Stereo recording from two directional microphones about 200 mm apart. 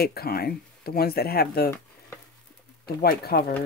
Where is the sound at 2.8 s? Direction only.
50° left (ahead or behind).